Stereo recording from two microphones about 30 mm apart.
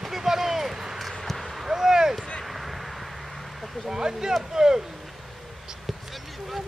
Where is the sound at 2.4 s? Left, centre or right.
Centre.